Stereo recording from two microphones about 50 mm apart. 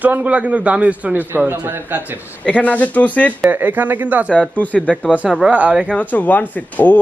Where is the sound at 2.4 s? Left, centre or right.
Left.